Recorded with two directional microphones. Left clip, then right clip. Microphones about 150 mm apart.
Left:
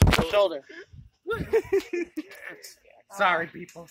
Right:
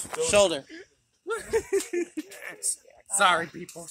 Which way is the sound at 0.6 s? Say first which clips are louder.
Even; 75° left (ahead or behind).